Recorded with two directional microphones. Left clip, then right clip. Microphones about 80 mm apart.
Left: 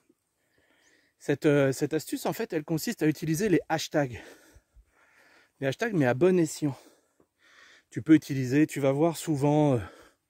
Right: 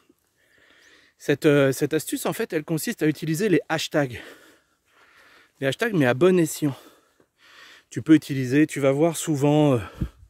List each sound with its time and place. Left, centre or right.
0.7 s speech: right
2.9 s speech: centre
5.0 s a sound: right
5.7 s speech: right